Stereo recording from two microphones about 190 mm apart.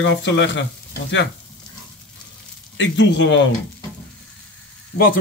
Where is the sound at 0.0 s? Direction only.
70° left (ahead or behind).